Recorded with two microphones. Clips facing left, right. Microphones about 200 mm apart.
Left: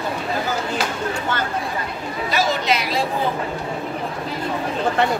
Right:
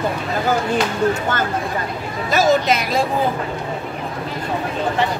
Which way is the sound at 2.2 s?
45° right (ahead or behind).